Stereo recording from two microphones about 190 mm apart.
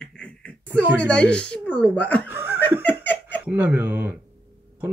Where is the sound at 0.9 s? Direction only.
5° left (ahead or behind).